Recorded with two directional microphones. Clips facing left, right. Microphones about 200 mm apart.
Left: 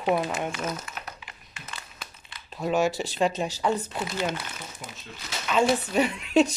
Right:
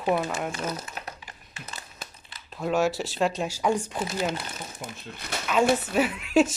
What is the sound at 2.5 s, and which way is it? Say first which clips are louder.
Speech: even; centre (ahead or behind).